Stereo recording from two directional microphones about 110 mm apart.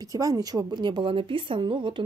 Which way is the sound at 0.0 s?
35° right (ahead or behind).